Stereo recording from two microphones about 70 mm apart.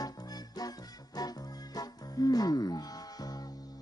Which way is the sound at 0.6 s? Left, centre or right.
Left.